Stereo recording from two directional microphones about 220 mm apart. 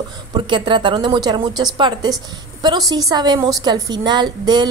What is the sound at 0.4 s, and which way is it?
A woman's voice, 20° right (ahead or behind).